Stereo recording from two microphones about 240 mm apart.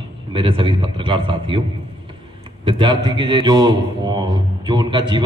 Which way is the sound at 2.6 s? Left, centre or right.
Centre.